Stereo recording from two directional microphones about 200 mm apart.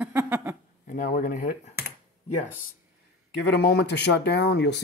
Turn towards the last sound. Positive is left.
turn(degrees=60)  # may be behind; listen again after turning